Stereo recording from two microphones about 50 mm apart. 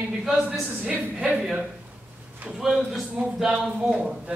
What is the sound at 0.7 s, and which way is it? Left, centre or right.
Speech, right.